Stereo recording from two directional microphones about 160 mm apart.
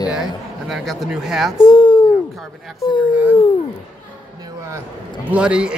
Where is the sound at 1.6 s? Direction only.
30° left (ahead or behind).